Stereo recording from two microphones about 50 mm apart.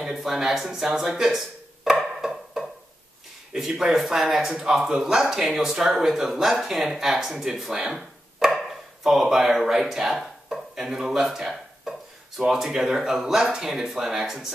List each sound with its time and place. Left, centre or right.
0.0 s speech: centre
2.0 s wood block: centre
3.5 s speech: centre